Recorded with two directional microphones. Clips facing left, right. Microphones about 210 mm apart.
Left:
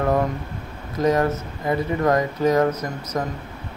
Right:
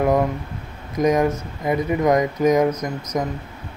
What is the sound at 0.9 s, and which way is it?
Speech, 15° right (ahead or behind).